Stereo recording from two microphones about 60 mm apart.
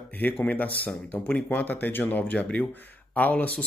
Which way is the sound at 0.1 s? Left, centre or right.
Left.